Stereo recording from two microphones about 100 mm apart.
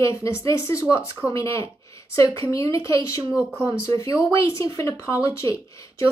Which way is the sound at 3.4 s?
15° right (ahead or behind).